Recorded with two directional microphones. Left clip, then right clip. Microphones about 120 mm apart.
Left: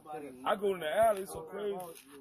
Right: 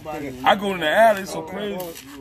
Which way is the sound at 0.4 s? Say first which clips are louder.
Right 13 dB; 55° left (ahead or behind).